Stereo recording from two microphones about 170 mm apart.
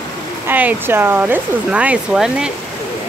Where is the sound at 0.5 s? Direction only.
10° right (ahead or behind).